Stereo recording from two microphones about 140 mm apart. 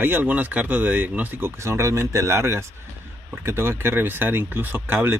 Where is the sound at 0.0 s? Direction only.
15° right (ahead or behind).